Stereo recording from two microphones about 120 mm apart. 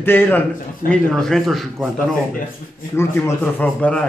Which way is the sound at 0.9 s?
5° left (ahead or behind).